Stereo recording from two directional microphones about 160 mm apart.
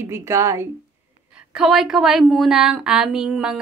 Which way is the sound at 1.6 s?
Centre (ahead or behind).